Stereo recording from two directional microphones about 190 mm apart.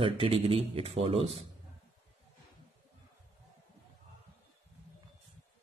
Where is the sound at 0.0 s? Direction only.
30° right (ahead or behind).